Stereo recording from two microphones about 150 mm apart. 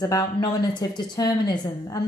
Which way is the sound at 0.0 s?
25° left (ahead or behind).